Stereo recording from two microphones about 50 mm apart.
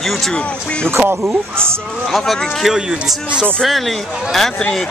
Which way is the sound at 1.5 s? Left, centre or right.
Right.